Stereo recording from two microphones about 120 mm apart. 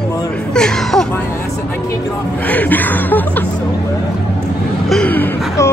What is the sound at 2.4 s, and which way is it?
Music, 15° left (ahead or behind).